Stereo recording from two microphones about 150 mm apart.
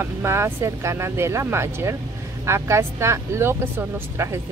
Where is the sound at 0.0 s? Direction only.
15° right (ahead or behind).